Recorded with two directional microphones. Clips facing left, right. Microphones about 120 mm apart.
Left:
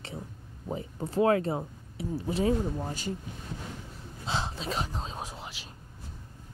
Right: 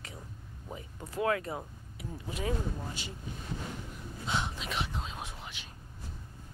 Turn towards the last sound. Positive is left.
turn(degrees=35)  # may be behind; listen again after turning